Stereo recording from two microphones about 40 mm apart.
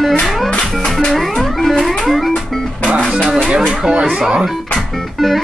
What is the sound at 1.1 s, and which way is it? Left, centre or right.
Music, centre.